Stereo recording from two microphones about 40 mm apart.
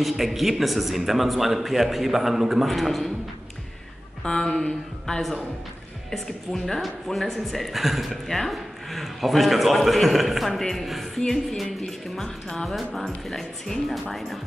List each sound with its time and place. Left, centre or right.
0.0 s speech: centre
4.2 s speech: centre
12.2 s speech: centre
12.6 s speech: centre